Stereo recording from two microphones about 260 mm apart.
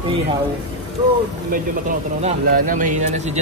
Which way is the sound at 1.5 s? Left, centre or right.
Right.